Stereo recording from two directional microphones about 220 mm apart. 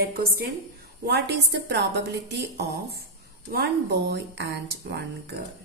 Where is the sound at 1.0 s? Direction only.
50° right (ahead or behind).